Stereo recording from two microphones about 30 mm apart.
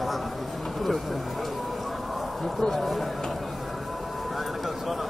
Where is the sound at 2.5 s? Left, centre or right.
Centre.